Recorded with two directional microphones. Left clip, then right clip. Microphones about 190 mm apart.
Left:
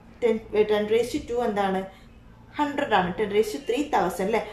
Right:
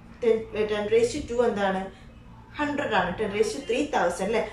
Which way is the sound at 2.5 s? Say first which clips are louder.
Left 2 dB; 45° left (ahead or behind).